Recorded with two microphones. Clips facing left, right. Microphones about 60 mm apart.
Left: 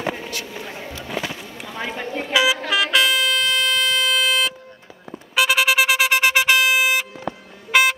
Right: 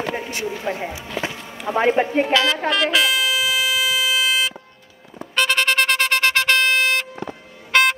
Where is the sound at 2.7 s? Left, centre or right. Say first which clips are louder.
Even; centre.